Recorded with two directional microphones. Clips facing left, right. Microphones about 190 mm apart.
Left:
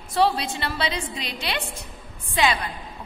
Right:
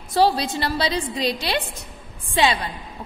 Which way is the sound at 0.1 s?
35° right (ahead or behind).